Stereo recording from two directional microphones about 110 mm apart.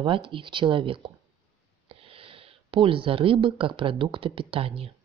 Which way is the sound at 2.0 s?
55° right (ahead or behind).